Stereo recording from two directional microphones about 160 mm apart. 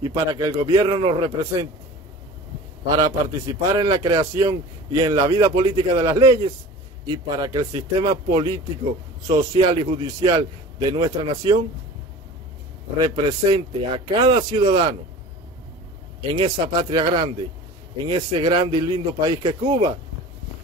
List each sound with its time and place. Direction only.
0.0 s a man's voice: 25° right (ahead or behind)
3.0 s a man's voice: 25° right (ahead or behind)
5.6 s speech: 35° right (ahead or behind)
6.0 s a man's voice: 20° right (ahead or behind)
13.0 s a man's voice: 30° right (ahead or behind)
16.3 s a man's voice: 30° right (ahead or behind)